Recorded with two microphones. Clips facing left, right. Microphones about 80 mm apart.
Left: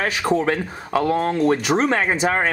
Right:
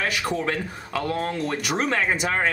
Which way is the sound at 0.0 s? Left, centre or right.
Left.